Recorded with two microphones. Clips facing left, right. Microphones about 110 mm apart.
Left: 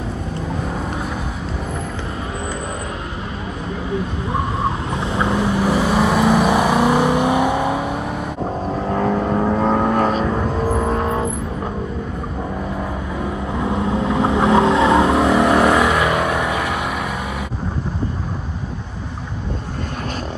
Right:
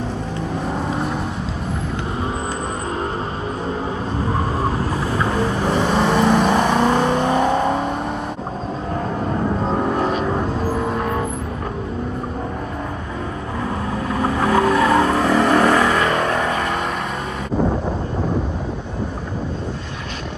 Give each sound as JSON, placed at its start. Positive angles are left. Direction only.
{"t": 4.9, "sound": "vehicle", "side_deg": 20}
{"t": 5.6, "sound": "vehicle", "side_deg": 10}
{"t": 9.9, "sound": "music", "side_deg": 45}
{"t": 13.6, "sound": "vehicle", "side_deg": 15}